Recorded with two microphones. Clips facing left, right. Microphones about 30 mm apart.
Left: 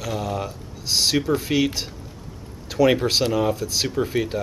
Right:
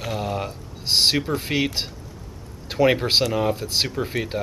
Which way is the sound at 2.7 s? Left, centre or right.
Right.